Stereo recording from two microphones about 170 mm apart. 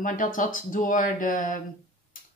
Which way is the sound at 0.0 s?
50° left (ahead or behind).